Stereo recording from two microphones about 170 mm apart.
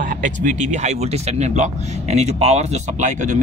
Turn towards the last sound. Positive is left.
turn(degrees=-45)  # may be behind; listen again after turning